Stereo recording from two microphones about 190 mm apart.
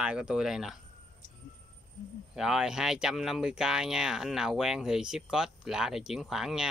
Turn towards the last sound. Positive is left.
turn(degrees=0)  # may be behind; listen again after turning